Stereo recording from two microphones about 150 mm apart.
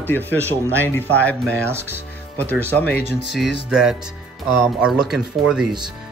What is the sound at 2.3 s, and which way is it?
Speech, 10° left (ahead or behind).